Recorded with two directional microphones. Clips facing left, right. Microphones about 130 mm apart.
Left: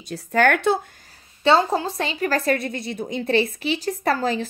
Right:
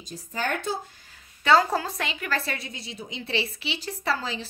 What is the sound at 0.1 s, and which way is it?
Speech, 70° left (ahead or behind).